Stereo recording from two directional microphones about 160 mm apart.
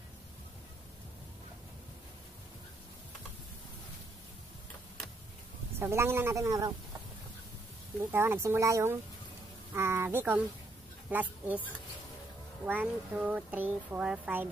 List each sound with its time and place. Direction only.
5.8 s speech: 15° right (ahead or behind)
8.1 s speech: 15° right (ahead or behind)
12.6 s speech: 10° right (ahead or behind)